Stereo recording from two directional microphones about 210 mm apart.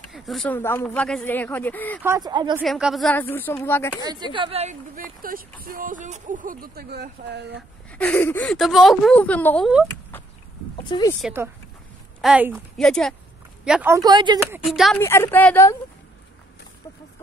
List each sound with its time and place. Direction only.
0.1 s speech: centre (ahead or behind)
2.0 s speech: 20° right (ahead or behind)
2.6 s speech: centre (ahead or behind)
4.0 s speech: 20° right (ahead or behind); by 7.6 s 55° right (ahead or behind)
7.9 s speech: 5° left (ahead or behind)
10.8 s speech: 20° left (ahead or behind)
12.2 s a woman's voice: 5° right (ahead or behind)
13.7 s speech: 10° right (ahead or behind)
14.7 s a woman's voice: centre (ahead or behind)
15.0 s speech: 10° left (ahead or behind)